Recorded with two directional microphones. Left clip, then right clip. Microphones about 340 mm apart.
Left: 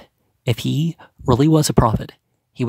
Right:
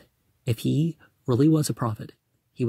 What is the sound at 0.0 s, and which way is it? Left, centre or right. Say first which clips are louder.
Speech: left 9 dB; centre.